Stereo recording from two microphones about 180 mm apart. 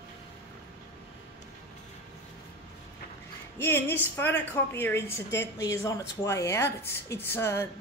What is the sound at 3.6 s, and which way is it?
A woman's voice, 10° left (ahead or behind).